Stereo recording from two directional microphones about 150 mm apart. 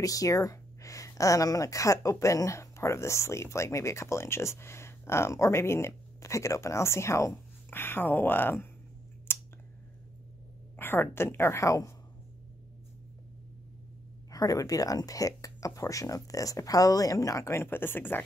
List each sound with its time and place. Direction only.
0.0 s speech: 25° left (ahead or behind)
9.3 s scissors: 15° left (ahead or behind)
10.8 s speech: 15° left (ahead or behind)
14.3 s speech: 25° left (ahead or behind)